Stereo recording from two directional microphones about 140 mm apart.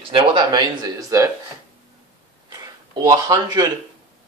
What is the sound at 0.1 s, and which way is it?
A man's voice, 35° right (ahead or behind).